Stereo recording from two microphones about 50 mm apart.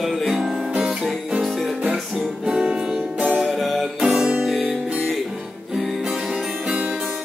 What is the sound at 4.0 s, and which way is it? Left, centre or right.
Music, centre.